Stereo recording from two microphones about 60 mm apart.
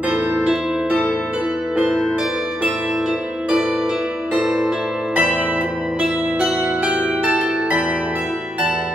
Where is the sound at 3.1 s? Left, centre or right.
Centre.